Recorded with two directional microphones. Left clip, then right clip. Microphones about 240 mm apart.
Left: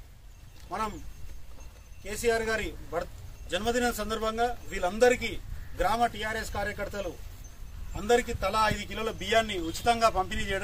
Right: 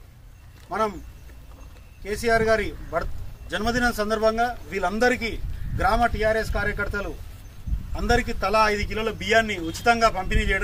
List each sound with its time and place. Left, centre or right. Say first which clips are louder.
0.7 s speech: right 8 dB; centre
2.0 s a man's voice: right 7 dB; centre
7.9 s a man's voice: right 2 dB; centre